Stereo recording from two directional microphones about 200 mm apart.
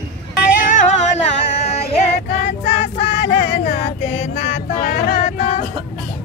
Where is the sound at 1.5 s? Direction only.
35° left (ahead or behind).